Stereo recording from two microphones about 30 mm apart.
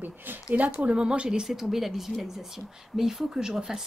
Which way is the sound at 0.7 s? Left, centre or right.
Right.